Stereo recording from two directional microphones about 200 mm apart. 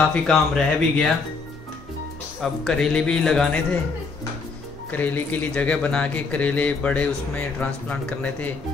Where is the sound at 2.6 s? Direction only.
5° left (ahead or behind).